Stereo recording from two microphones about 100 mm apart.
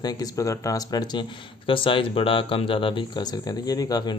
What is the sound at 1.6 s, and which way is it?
Speech, 60° left (ahead or behind).